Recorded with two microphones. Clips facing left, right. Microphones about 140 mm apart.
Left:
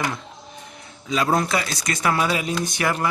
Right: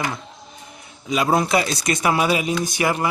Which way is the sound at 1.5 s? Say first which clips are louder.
Right 5 dB; 20° right (ahead or behind).